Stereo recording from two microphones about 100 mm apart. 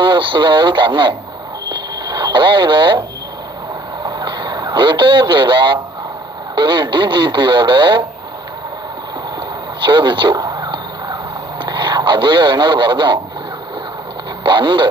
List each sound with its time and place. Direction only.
0.0 s speech: 55° right (ahead or behind)
1.7 s radio: 50° right (ahead or behind)
4.0 s radio: 45° right (ahead or behind)
6.5 s speech: 50° right (ahead or behind)
9.8 s speech: 50° right (ahead or behind)
10.4 s a sound: 45° right (ahead or behind)
11.6 s a man's voice: 50° right (ahead or behind)
14.4 s speech: 50° right (ahead or behind)